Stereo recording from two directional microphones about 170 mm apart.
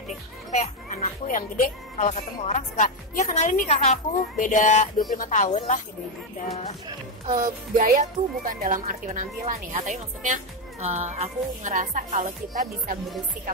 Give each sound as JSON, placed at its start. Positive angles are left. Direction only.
{"t": 0.5, "sound": "a woman's voice", "side_deg": 45}
{"t": 7.3, "sound": "speech", "side_deg": -50}